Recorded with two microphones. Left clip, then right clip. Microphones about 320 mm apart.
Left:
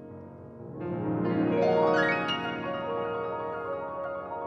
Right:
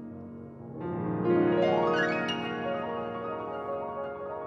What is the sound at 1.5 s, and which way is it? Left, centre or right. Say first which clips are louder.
Music: left 2 dB; left.